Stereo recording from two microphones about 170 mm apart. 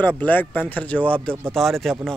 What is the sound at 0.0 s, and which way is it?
Speech, 10° left (ahead or behind).